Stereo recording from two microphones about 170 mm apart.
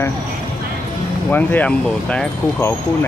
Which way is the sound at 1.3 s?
10° left (ahead or behind).